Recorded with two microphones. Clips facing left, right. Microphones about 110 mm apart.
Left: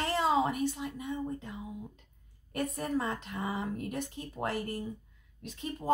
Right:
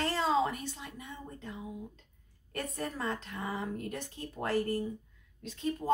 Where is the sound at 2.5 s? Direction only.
15° left (ahead or behind).